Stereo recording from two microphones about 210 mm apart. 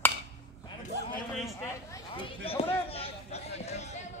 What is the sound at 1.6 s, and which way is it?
A man's voice, 15° left (ahead or behind).